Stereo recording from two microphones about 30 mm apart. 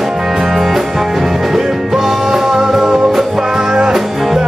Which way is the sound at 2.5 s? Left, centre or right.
Centre.